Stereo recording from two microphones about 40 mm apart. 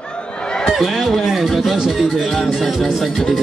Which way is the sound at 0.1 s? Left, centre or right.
Left.